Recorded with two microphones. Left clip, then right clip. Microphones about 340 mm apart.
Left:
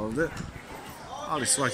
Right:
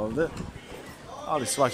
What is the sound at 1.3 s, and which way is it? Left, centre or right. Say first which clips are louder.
Speech: right 3 dB; centre.